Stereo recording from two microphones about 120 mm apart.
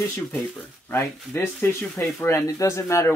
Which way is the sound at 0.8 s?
20° left (ahead or behind).